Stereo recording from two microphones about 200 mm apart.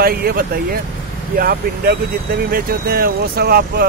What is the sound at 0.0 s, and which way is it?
Speech, 50° right (ahead or behind).